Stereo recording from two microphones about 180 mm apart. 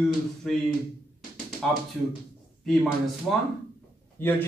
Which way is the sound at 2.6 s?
Centre (ahead or behind).